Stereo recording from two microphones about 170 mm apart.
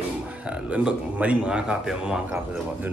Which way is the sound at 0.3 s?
5° right (ahead or behind).